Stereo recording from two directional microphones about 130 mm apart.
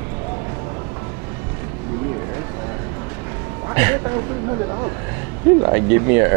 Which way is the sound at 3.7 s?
20° right (ahead or behind).